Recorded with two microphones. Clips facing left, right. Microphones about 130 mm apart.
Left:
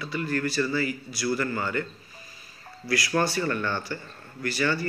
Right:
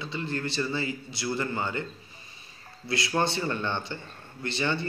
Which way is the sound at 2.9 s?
25° right (ahead or behind).